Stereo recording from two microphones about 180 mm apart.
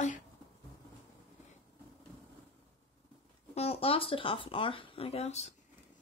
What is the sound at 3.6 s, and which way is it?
Speech, 35° left (ahead or behind).